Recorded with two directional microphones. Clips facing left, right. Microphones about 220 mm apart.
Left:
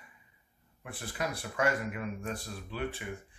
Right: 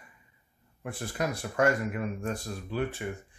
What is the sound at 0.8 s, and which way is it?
Speech, 45° right (ahead or behind).